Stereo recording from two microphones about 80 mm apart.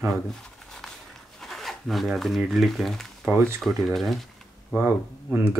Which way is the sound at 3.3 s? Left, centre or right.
Right.